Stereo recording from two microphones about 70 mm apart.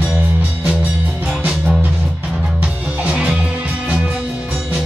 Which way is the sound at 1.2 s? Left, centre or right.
Centre.